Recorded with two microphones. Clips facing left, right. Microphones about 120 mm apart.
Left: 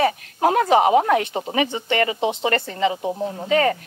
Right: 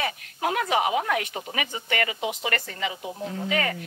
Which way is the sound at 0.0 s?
35° left (ahead or behind).